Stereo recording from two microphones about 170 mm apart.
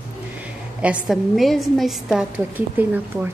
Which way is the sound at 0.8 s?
5° right (ahead or behind).